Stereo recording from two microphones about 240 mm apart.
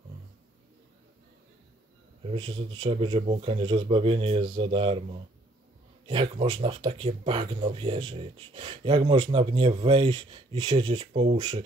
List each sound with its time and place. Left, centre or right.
2.3 s speech: right